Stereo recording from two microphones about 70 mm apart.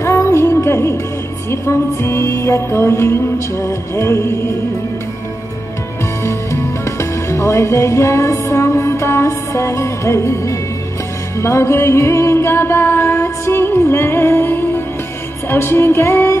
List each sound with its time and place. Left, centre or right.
0.0 s music: left
6.2 s music: left